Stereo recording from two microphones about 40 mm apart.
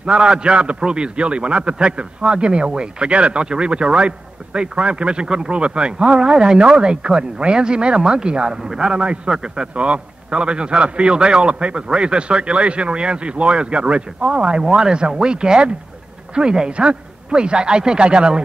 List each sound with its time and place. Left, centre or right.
0.0 s a man's voice: right
8.9 s a man's voice: right
9.8 s a man's voice: right